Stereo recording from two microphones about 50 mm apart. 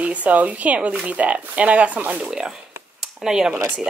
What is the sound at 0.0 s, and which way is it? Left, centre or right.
Speech, right.